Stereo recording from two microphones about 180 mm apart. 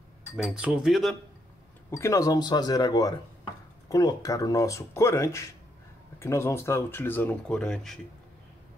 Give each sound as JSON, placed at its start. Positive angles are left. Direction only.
{"t": 0.4, "sound": "speech", "side_deg": -5}
{"t": 1.9, "sound": "speech", "side_deg": 15}